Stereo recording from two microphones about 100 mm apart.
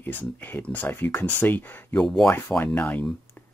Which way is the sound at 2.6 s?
15° left (ahead or behind).